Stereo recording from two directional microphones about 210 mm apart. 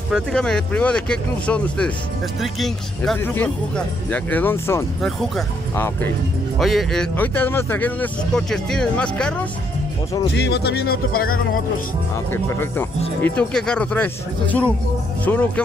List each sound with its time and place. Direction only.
0.1 s speech: 5° left (ahead or behind)
6.6 s speech: centre (ahead or behind)
10.2 s speech: 55° left (ahead or behind)
12.3 s speech: 10° left (ahead or behind)